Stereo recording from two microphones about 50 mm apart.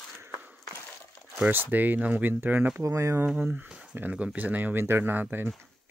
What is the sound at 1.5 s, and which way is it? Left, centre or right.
Speech, right.